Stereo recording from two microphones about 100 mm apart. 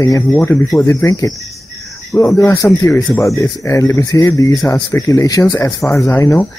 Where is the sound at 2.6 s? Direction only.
35° left (ahead or behind).